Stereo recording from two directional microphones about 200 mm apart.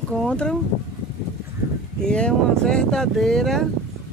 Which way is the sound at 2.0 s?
5° left (ahead or behind).